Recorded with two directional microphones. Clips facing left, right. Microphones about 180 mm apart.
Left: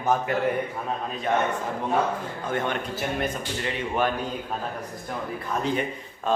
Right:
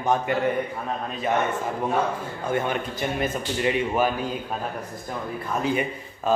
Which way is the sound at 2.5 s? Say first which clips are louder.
Right 2 dB; 10° right (ahead or behind).